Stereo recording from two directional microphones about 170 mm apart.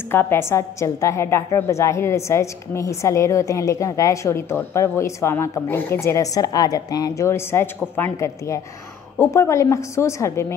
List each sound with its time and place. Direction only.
0.1 s a woman's voice: 15° left (ahead or behind)